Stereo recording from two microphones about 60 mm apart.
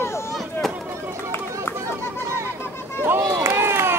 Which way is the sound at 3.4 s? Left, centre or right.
Right.